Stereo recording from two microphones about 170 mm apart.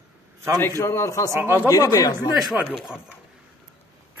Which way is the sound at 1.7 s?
20° left (ahead or behind).